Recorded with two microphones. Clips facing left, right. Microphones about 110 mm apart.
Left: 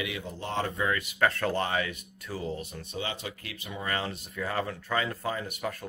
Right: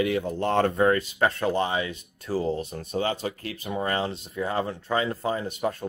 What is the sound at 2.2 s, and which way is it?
Speech, 35° right (ahead or behind).